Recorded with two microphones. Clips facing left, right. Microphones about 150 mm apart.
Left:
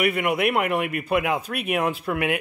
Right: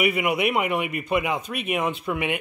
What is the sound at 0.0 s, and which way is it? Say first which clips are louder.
Speech: left 1 dB; centre (ahead or behind).